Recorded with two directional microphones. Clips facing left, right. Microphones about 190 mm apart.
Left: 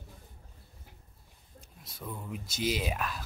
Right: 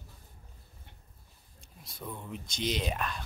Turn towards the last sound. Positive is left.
turn(degrees=5)  # may be behind; listen again after turning